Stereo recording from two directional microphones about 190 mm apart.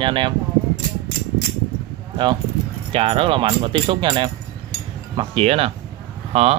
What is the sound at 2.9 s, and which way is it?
Speech, 30° right (ahead or behind).